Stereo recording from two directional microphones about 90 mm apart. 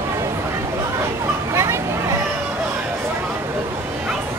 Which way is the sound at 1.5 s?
30° right (ahead or behind).